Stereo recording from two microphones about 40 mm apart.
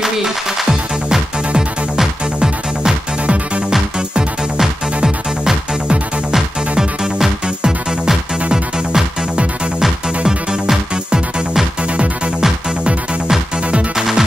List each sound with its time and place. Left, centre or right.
2.0 s music: centre
5.0 s music: centre
7.4 s music: centre
13.9 s music: centre